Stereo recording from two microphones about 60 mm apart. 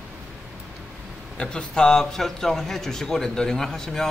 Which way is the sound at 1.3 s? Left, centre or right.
Centre.